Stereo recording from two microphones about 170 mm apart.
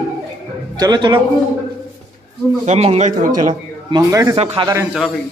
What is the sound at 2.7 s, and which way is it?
Speech, 40° right (ahead or behind).